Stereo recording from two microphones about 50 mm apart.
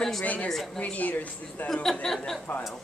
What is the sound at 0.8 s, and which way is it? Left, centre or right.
Speech, left.